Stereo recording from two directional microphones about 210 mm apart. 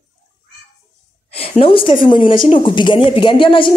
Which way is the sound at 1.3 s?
25° left (ahead or behind).